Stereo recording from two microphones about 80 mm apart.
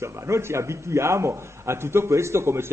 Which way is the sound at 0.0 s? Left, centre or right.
Right.